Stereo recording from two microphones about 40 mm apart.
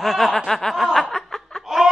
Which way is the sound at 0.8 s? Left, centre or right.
Centre.